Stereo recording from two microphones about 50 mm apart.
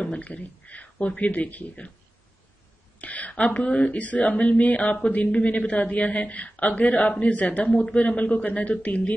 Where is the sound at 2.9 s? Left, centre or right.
Left.